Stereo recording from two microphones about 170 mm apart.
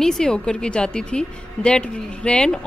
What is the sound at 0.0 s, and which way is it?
A woman's voice, 5° left (ahead or behind).